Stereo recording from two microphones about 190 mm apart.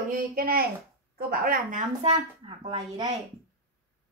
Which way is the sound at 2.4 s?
30° right (ahead or behind).